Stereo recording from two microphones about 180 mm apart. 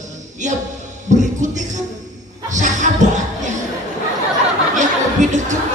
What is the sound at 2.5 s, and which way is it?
Music, 45° right (ahead or behind).